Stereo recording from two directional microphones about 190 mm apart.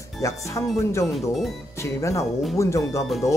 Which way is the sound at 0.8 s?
15° left (ahead or behind).